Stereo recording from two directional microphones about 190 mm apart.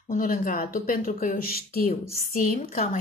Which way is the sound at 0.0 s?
45° left (ahead or behind).